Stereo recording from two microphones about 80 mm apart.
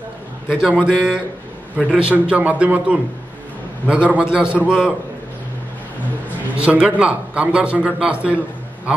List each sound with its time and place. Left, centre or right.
0.6 s a man's voice: centre
6.5 s a man's voice: centre